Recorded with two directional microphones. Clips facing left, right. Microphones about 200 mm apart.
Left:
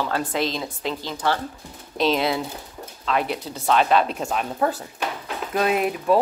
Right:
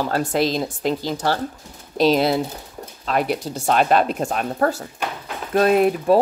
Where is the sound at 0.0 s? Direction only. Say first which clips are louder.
Right 4 dB; 40° right (ahead or behind).